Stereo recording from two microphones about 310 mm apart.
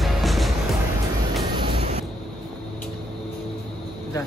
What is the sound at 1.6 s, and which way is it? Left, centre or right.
Vehicle, centre.